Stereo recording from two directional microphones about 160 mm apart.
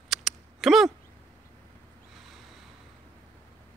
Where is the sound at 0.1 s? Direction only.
Centre (ahead or behind).